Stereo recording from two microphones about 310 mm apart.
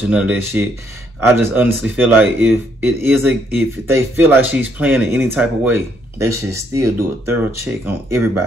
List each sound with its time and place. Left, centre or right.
0.1 s speech: centre